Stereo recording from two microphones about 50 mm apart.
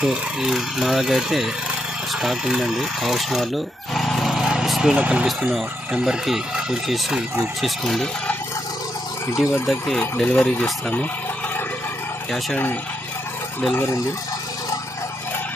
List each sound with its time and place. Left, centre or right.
0.0 s speech: centre
4.6 s vehicle: centre
4.9 s speech: right
6.0 s speech: centre
9.4 s speech: centre
10.2 s speech: centre